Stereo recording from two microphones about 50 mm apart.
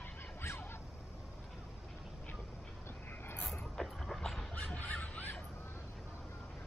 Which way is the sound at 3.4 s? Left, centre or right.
Centre.